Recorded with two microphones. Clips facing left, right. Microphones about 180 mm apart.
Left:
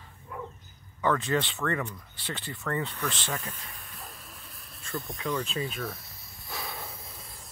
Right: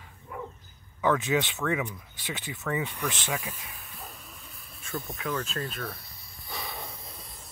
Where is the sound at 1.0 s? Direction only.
10° right (ahead or behind).